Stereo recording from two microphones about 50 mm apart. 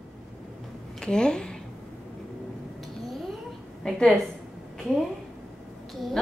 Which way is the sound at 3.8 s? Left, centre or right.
Centre.